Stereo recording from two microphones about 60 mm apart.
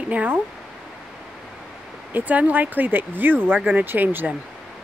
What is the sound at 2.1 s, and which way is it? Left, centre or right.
Speech, right.